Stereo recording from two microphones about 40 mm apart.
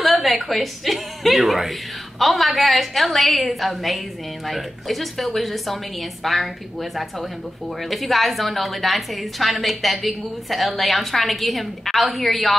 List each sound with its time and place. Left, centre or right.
0.0 s a woman's voice: centre